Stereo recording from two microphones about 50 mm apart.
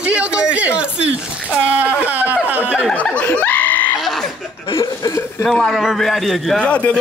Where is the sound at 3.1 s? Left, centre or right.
Left.